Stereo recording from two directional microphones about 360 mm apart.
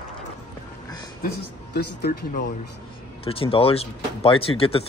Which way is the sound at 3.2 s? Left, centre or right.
Centre.